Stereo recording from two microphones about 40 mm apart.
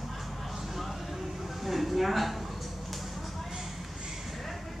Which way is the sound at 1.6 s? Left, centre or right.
Centre.